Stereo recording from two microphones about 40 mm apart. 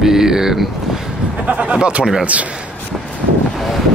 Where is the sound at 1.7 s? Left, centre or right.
Right.